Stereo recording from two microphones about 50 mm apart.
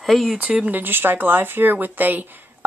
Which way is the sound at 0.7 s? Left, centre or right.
Right.